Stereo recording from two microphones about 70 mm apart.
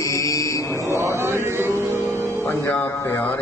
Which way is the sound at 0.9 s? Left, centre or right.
Right.